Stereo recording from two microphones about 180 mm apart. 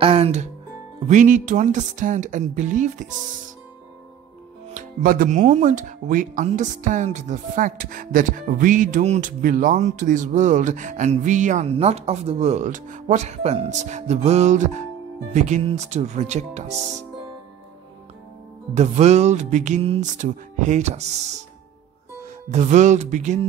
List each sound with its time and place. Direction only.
0.0 s music: 35° right (ahead or behind)
1.0 s speech: 45° right (ahead or behind)
4.6 s speech: 50° right (ahead or behind)
18.8 s speech: 40° right (ahead or behind)
22.5 s speech: 40° right (ahead or behind)